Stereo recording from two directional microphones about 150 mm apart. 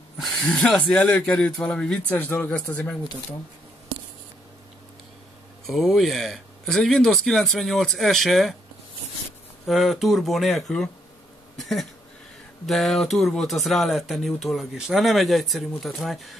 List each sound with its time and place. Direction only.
0.2 s speech: centre (ahead or behind)
5.7 s speech: centre (ahead or behind)
9.7 s speech: centre (ahead or behind)
11.5 s a sound: centre (ahead or behind)
12.6 s speech: centre (ahead or behind)